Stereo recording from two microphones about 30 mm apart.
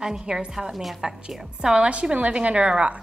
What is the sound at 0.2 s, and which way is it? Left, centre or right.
Speech, right.